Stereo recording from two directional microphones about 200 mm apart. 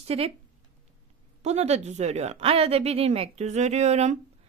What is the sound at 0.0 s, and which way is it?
Speech, 30° right (ahead or behind).